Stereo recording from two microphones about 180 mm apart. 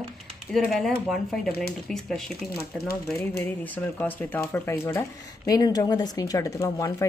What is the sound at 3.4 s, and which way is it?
Speech, 10° left (ahead or behind).